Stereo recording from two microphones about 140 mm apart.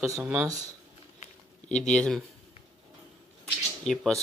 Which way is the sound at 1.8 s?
5° left (ahead or behind).